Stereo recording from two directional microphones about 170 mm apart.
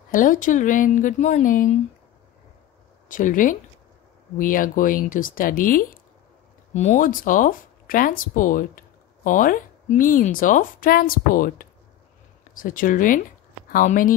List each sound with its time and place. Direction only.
0.1 s speech: 50° left (ahead or behind)
3.1 s speech: 50° left (ahead or behind)
6.7 s speech: 45° left (ahead or behind)